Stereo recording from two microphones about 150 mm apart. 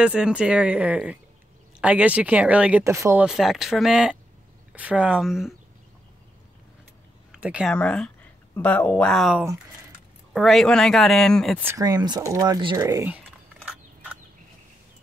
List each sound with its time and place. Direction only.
0.0 s speech: 5° right (ahead or behind)
2.8 s speech: 20° right (ahead or behind)
3.3 s speech: 5° right (ahead or behind)
7.3 s speech: 5° right (ahead or behind)
7.7 s speech: 5° left (ahead or behind)
11.5 s speech: 15° right (ahead or behind)
11.8 s speech: 25° right (ahead or behind)